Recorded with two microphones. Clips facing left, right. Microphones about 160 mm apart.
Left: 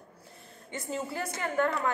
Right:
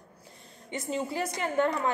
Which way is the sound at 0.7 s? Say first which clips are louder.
Right 3 dB; 20° right (ahead or behind).